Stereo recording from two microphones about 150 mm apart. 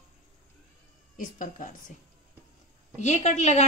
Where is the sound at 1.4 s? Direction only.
60° left (ahead or behind).